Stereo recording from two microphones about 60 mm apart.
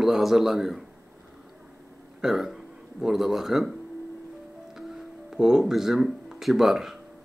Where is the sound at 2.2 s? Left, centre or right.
Centre.